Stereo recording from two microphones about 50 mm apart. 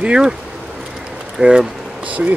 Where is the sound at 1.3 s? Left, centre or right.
Centre.